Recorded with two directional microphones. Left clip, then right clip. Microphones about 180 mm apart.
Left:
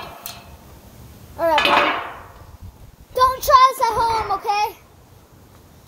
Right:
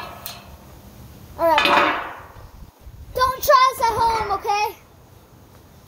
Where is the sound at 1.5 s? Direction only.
25° left (ahead or behind).